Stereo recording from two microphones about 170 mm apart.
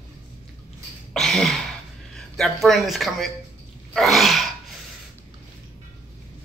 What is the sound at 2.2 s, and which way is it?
Speech, centre (ahead or behind).